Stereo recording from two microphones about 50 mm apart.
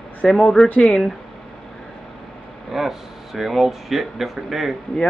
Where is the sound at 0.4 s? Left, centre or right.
Centre.